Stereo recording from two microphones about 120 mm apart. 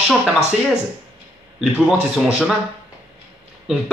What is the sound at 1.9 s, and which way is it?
Speech, 5° right (ahead or behind).